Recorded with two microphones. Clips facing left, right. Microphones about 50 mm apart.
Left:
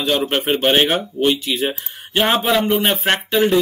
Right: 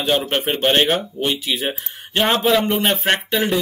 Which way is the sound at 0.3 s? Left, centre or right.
Centre.